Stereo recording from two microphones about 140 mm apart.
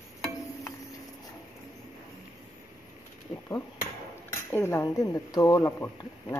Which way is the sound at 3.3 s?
25° left (ahead or behind).